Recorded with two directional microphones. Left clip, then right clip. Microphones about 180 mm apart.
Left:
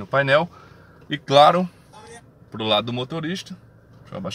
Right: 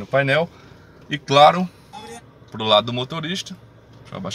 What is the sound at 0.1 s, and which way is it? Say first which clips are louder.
Speech: even; 50° left (ahead or behind).